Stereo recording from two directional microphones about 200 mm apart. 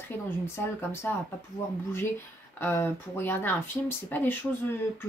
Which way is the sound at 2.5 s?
10° left (ahead or behind).